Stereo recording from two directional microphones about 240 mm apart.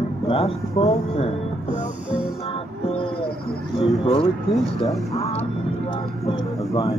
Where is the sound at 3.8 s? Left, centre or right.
Left.